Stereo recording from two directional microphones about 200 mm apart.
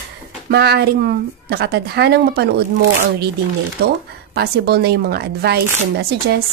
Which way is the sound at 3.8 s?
50° right (ahead or behind).